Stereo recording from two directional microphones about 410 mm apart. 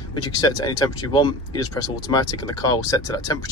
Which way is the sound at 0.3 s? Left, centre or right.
Centre.